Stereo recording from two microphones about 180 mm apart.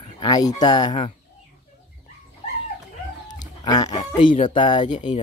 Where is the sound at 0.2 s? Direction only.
20° left (ahead or behind).